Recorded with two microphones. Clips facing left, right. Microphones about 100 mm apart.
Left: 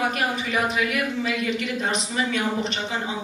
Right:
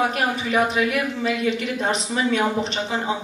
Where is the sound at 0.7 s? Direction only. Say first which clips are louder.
Right 2 dB; 30° right (ahead or behind).